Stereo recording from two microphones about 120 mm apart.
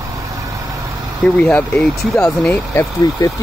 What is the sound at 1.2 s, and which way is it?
Speech, 10° left (ahead or behind).